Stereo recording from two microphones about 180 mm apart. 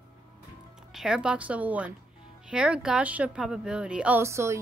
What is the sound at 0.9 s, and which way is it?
Speech, 5° right (ahead or behind).